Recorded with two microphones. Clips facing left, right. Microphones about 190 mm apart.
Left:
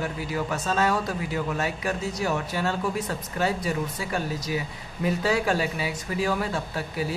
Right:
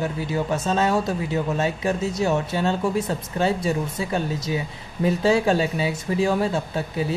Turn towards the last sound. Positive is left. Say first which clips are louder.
# right 4 dB
turn(degrees=-25)  # may be behind; listen again after turning